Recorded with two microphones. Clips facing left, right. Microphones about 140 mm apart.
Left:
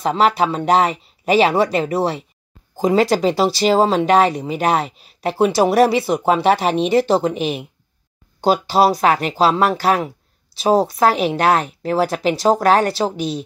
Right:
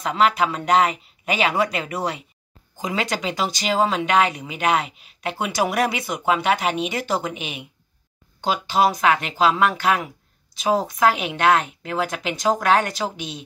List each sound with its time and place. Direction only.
0.0 s speech: 35° left (ahead or behind)